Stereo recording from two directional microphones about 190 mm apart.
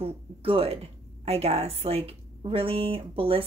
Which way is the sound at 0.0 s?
30° right (ahead or behind).